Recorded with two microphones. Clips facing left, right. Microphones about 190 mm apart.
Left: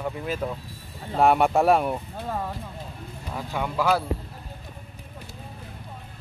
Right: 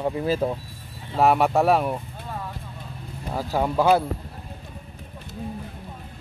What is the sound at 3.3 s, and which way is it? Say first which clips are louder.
Speech: right 6 dB; 35° right (ahead or behind).